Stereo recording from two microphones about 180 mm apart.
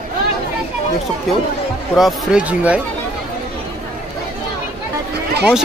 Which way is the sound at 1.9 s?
5° right (ahead or behind).